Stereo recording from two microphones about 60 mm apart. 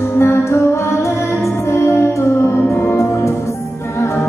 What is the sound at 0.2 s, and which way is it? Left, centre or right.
Music, left.